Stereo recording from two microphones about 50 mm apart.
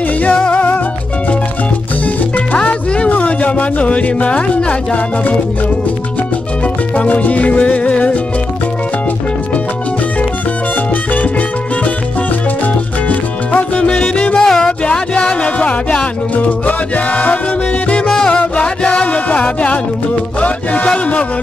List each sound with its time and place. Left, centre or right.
0.2 s music: left
2.3 s music: left
3.1 s a sound: left
7.0 s music: left
13.1 s music: left; by 14.7 s centre
14.9 s music: left
18.0 s music: centre